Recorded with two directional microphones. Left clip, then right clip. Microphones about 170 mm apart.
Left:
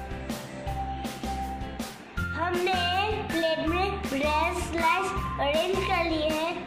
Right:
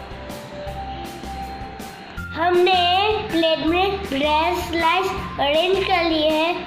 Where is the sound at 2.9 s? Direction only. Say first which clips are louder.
Right 8 dB; 25° right (ahead or behind).